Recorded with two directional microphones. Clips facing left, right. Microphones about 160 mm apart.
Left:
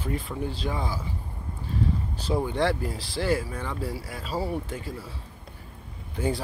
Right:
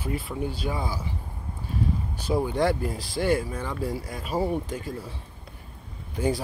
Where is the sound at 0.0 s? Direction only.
10° right (ahead or behind).